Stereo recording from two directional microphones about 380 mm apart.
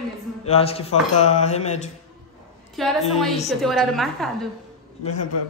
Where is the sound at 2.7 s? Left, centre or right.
Centre.